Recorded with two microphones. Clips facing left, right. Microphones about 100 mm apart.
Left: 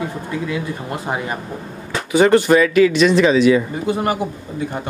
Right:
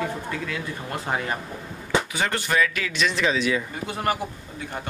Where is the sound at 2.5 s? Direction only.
15° left (ahead or behind).